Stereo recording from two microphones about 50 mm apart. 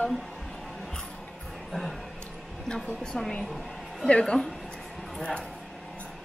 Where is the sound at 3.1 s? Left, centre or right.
Left.